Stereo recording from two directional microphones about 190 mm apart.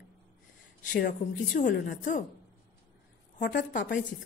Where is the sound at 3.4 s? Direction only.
45° left (ahead or behind).